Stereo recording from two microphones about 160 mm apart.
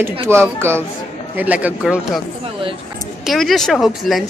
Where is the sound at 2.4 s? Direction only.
35° right (ahead or behind).